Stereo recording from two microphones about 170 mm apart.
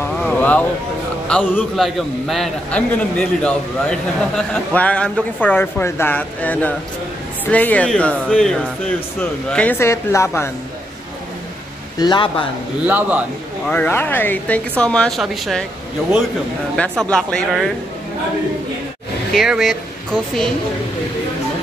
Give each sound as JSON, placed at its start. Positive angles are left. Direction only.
{"t": 0.2, "sound": "a sound", "side_deg": 10}
{"t": 1.2, "sound": "a man's voice", "side_deg": 10}
{"t": 12.0, "sound": "speech", "side_deg": 30}
{"t": 12.8, "sound": "a man's voice", "side_deg": -10}
{"t": 13.7, "sound": "speech", "side_deg": 10}
{"t": 17.0, "sound": "a man's voice", "side_deg": 5}
{"t": 19.3, "sound": "a man's voice", "side_deg": 0}